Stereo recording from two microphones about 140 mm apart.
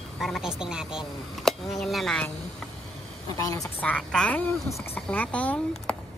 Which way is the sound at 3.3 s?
25° left (ahead or behind).